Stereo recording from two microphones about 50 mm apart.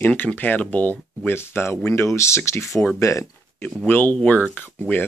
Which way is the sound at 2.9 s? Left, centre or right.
Left.